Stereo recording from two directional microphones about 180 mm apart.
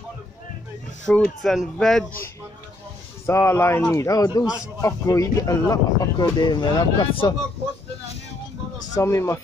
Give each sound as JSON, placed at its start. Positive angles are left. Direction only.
{"t": 1.0, "sound": "speech", "side_deg": 5}
{"t": 3.3, "sound": "a man's voice", "side_deg": 15}
{"t": 8.9, "sound": "a man's voice", "side_deg": 15}